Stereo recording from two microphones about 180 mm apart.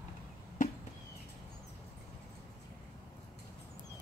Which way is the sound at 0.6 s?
45° left (ahead or behind).